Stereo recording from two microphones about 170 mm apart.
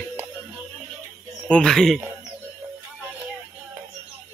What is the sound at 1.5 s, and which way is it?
Speech, 5° left (ahead or behind).